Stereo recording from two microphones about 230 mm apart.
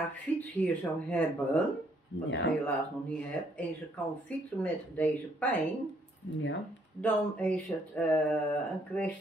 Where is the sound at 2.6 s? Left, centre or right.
Centre.